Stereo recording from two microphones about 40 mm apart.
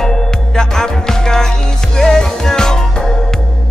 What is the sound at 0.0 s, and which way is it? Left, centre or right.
Music, centre.